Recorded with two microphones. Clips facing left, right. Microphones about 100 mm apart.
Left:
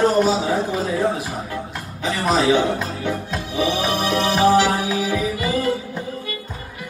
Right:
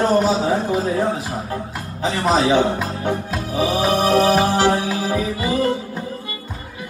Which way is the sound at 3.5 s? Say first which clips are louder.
Right 3 dB; 40° right (ahead or behind).